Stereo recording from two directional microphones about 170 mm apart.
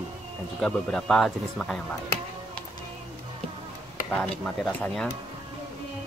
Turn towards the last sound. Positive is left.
turn(degrees=5)  # may be behind; listen again after turning